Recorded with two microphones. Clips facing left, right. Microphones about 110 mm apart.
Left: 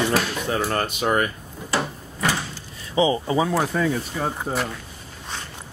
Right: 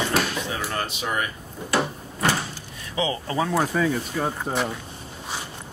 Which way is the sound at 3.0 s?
20° left (ahead or behind).